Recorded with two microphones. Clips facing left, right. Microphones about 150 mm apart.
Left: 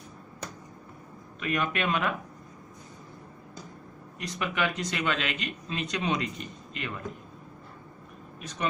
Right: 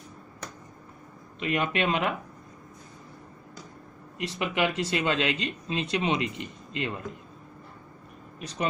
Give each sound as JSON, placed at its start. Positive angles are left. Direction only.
{"t": 1.4, "sound": "a man's voice", "side_deg": -25}
{"t": 4.2, "sound": "a man's voice", "side_deg": -25}